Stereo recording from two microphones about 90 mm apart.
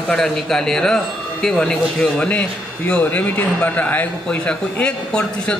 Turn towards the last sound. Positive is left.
turn(degrees=10)  # may be behind; listen again after turning